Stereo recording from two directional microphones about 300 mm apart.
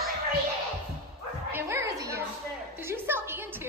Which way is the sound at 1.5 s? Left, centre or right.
Centre.